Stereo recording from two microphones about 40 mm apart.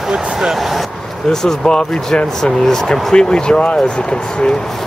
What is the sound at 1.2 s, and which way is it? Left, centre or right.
Speech, centre.